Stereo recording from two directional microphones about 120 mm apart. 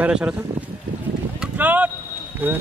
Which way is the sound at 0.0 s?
10° right (ahead or behind).